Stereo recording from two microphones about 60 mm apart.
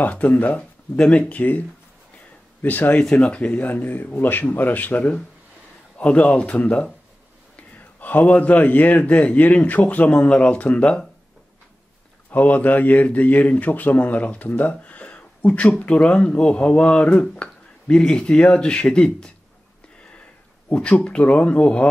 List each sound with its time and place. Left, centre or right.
0.0 s a man's voice: left
0.6 s a man's voice: centre
2.6 s a man's voice: left
3.0 s a man's voice: centre
8.0 s a man's voice: left
12.3 s a man's voice: left
14.6 s a sound: left
15.8 s speech: centre
20.7 s a man's voice: left